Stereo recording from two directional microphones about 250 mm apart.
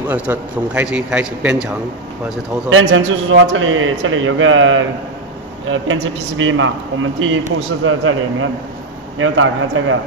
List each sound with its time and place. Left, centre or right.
0.1 s a man's voice: centre
2.7 s a man's voice: right